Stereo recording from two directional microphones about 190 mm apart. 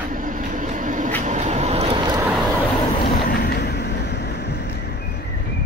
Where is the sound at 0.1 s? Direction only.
45° right (ahead or behind); by 2.2 s 25° right (ahead or behind).